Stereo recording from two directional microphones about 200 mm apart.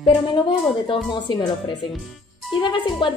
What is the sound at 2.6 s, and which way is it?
Speech, 25° left (ahead or behind).